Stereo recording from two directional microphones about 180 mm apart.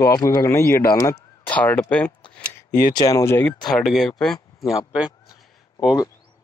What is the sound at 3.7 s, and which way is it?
Speech, centre (ahead or behind).